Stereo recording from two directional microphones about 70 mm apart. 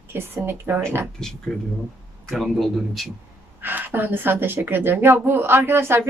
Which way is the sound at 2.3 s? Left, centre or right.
Centre.